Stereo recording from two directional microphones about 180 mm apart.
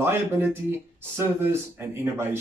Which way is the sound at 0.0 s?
10° right (ahead or behind).